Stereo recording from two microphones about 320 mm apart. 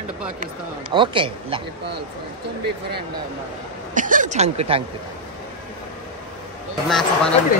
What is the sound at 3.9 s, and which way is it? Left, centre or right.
Speech, right.